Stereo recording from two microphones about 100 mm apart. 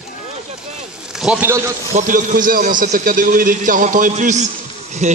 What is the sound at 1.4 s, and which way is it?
Speech, 30° right (ahead or behind).